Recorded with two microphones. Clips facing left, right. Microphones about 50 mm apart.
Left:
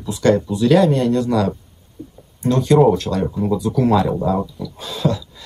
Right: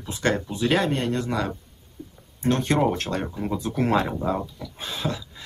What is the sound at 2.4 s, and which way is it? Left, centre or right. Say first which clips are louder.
Speech: left 8 dB; right.